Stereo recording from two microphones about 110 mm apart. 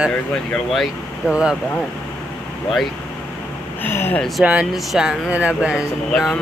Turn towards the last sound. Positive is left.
turn(degrees=5)  # may be behind; listen again after turning